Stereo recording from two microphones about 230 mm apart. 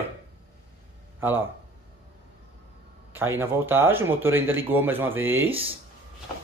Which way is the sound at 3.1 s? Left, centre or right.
Centre.